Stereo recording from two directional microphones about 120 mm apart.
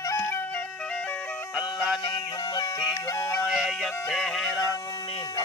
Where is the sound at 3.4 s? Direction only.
Centre (ahead or behind).